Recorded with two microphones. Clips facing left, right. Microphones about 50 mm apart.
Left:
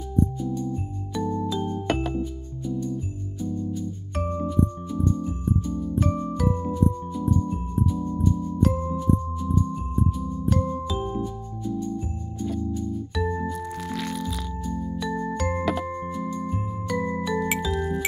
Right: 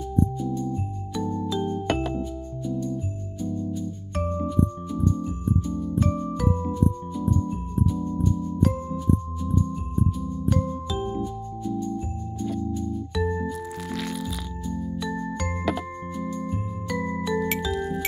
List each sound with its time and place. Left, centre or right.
1.2 s music: left
1.8 s music: centre
3.4 s music: centre
4.2 s music: centre
7.4 s music: centre
8.0 s music: left
12.4 s music: centre